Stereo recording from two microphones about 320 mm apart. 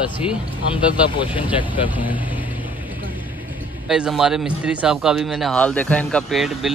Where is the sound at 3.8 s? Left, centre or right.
Centre.